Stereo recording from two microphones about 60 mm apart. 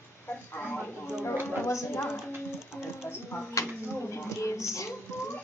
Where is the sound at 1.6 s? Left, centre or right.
Left.